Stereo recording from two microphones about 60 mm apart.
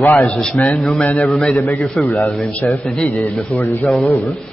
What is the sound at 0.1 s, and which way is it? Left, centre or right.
A man's voice, left.